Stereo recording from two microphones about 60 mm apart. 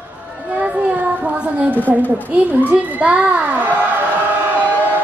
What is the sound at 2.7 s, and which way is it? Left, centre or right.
A woman's voice, right.